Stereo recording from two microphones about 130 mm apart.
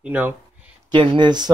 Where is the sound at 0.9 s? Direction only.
40° right (ahead or behind).